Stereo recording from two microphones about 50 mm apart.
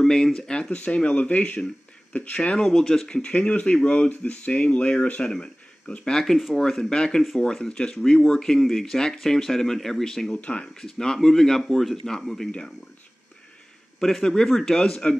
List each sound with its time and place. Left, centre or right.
0.0 s speech: centre
2.6 s speech: centre
3.2 s speech: left
6.1 s speech: centre
8.5 s speech: centre
10.3 s speech: left
10.7 s speech: centre
12.4 s speech: left
13.9 s speech: centre